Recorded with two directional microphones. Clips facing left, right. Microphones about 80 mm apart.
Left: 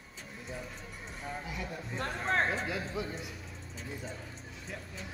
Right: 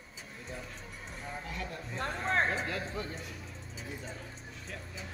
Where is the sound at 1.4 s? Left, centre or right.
Centre.